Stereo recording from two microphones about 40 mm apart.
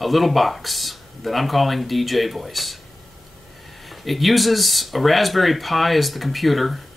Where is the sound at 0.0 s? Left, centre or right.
Centre.